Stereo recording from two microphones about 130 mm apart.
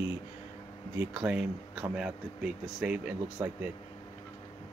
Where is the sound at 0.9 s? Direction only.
10° right (ahead or behind).